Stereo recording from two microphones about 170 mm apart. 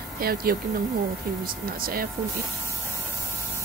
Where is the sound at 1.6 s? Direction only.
60° right (ahead or behind).